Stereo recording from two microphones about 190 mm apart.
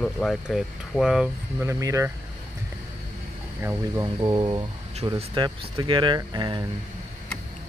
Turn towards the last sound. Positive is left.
turn(degrees=-20)  # may be behind; listen again after turning